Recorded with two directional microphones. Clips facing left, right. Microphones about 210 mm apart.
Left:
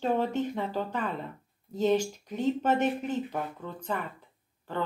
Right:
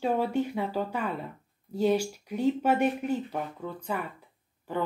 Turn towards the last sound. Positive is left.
turn(degrees=-10)  # may be behind; listen again after turning